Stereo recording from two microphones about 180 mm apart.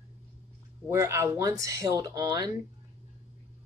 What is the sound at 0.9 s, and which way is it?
Speech, 15° right (ahead or behind).